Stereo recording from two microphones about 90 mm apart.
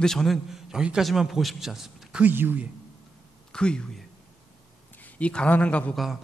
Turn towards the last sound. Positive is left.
turn(degrees=15)  # may be behind; listen again after turning